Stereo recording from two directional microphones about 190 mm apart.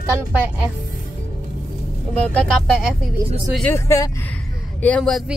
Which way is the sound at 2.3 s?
5° left (ahead or behind).